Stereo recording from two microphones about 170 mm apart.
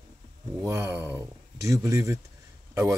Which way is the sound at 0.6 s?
10° right (ahead or behind).